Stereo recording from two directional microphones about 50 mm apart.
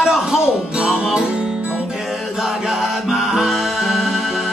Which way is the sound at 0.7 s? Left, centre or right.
Right.